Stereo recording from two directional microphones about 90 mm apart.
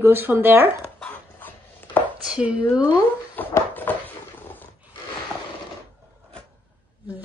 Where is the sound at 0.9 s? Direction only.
20° left (ahead or behind).